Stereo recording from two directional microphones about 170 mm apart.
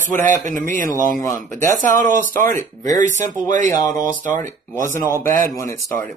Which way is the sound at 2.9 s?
45° right (ahead or behind).